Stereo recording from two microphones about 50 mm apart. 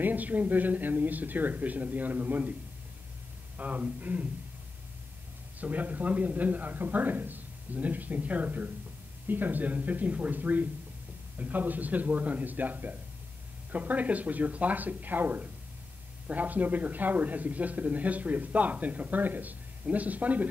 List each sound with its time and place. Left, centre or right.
0.0 s speech: right
3.5 s speech: right
5.6 s speech: right